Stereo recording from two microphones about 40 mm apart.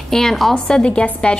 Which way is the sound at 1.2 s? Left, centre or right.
Left.